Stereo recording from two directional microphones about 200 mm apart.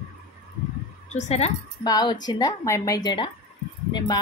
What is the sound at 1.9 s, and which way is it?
A woman's voice, 20° left (ahead or behind).